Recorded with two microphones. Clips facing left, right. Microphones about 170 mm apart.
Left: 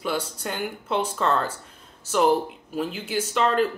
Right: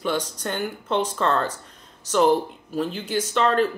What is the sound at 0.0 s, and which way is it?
Speech, 10° left (ahead or behind).